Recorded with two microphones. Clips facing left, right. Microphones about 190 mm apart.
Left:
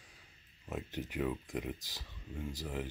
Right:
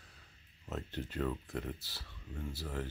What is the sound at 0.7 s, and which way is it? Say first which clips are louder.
Speech: left 1 dB; 15° left (ahead or behind).